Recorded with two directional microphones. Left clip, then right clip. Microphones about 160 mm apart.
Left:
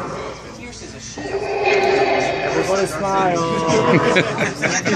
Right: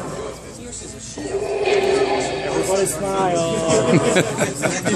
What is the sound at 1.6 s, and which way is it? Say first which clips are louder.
Music: left 2 dB; 10° right (ahead or behind).